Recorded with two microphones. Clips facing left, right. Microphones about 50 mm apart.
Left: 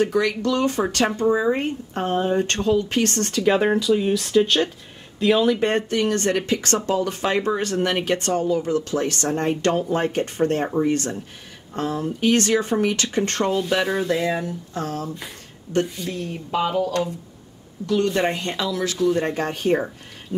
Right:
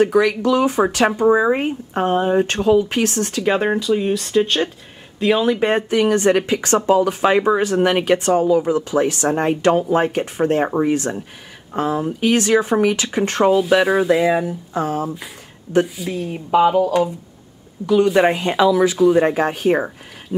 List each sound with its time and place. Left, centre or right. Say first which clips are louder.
0.0 s speech: right 5 dB; centre
1.2 s speech: right 5 dB; right
1.5 s speech: right 4 dB; centre